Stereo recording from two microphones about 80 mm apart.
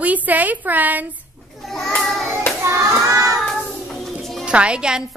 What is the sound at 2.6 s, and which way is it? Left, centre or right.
Hands, right.